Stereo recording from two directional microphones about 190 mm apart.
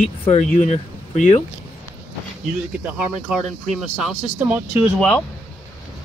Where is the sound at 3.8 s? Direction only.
5° right (ahead or behind).